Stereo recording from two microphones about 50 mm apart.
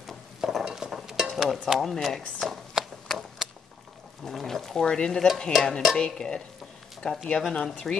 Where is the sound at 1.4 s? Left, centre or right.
Centre.